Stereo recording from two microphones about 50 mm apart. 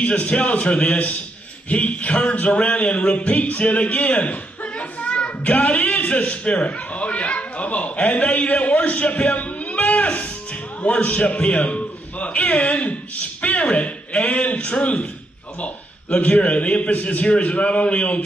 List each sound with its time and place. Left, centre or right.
0.0 s a man's voice: left
11.1 s a man's voice: centre
11.4 s a man's voice: left